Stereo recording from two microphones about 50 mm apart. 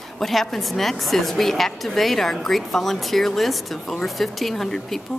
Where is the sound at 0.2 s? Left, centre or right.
Centre.